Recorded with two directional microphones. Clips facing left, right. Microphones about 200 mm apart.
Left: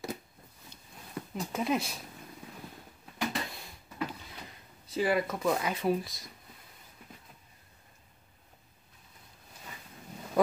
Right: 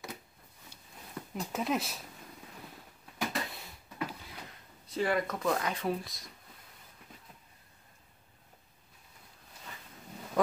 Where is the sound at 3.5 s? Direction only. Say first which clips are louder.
Left 1 dB; 5° right (ahead or behind).